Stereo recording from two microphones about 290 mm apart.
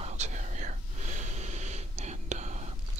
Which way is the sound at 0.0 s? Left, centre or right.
Right.